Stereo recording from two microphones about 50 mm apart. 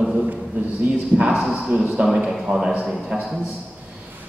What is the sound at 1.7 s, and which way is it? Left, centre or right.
Speech, right.